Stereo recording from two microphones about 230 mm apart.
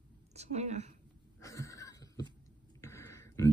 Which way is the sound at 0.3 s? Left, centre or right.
Right.